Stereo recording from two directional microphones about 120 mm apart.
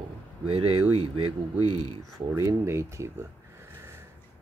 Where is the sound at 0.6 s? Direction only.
50° right (ahead or behind).